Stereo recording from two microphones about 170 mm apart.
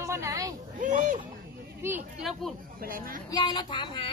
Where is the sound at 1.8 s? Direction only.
15° right (ahead or behind).